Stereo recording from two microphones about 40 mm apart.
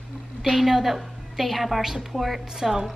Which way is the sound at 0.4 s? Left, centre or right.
Centre.